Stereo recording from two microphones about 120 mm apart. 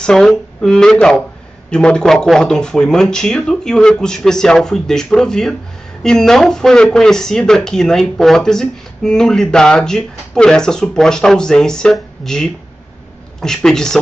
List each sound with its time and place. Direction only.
0.0 s speech: 5° left (ahead or behind)